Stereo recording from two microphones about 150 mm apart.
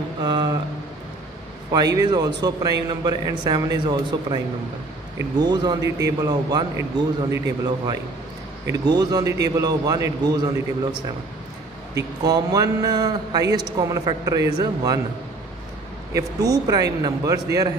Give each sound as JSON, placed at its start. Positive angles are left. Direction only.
{"t": 0.2, "sound": "a sound", "side_deg": -30}
{"t": 1.7, "sound": "a man's voice", "side_deg": -25}
{"t": 5.4, "sound": "a man's voice", "side_deg": -30}
{"t": 12.0, "sound": "a man's voice", "side_deg": -25}
{"t": 16.1, "sound": "a man's voice", "side_deg": -25}